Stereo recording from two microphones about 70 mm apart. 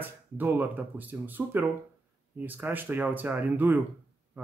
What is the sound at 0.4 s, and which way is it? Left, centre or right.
Speech, right.